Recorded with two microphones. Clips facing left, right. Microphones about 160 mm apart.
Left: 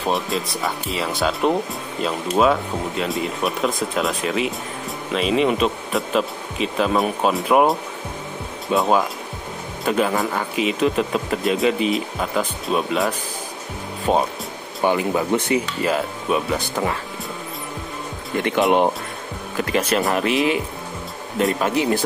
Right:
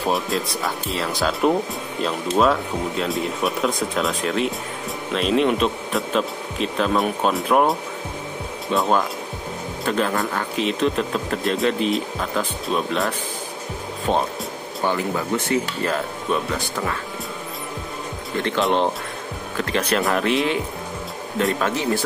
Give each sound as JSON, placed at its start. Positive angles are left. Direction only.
{"t": 0.0, "sound": "speech", "side_deg": 0}
{"t": 14.8, "sound": "speech", "side_deg": 15}
{"t": 18.4, "sound": "speech", "side_deg": 15}